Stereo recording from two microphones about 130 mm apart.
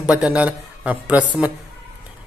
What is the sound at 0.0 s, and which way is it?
A man's voice, 5° right (ahead or behind).